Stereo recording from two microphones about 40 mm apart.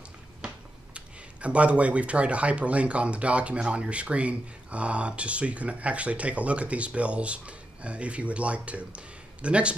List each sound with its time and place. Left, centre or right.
0.9 s speech: right